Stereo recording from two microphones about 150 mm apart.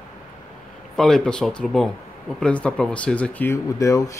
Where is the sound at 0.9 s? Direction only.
5° left (ahead or behind).